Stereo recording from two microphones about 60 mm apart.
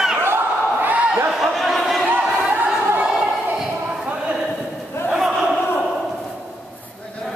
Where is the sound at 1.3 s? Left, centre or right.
Centre.